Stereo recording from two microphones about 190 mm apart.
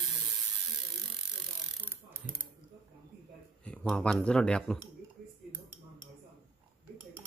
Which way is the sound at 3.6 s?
5° left (ahead or behind).